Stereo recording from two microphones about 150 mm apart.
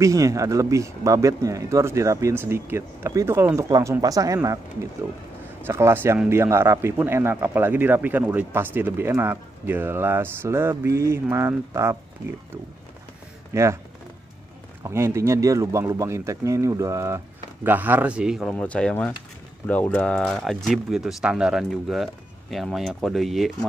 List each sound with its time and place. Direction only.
0.0 s speech: 20° right (ahead or behind)
5.7 s speech: 20° right (ahead or behind)
13.5 s speech: 20° right (ahead or behind)
14.8 s speech: 15° right (ahead or behind)
18.5 s speech: 5° left (ahead or behind)